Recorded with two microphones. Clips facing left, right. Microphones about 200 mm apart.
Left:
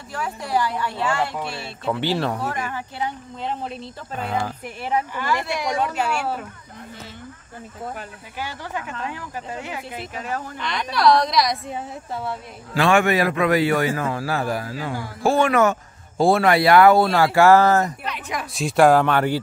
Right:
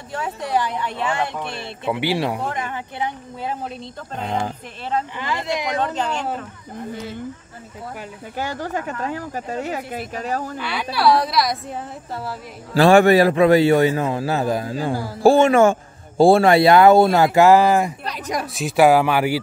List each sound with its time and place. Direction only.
0.1 s a man's voice: 20° right (ahead or behind)
3.4 s a woman's voice: centre (ahead or behind)
4.2 s a man's voice: 25° right (ahead or behind)
5.8 s speech: 10° left (ahead or behind)
8.4 s speech: 45° right (ahead or behind)
10.6 s a woman's voice: 5° right (ahead or behind)
12.7 s a man's voice: 35° right (ahead or behind); by 17.9 s 15° right (ahead or behind)
18.0 s speech: 40° right (ahead or behind)
18.5 s speech: centre (ahead or behind)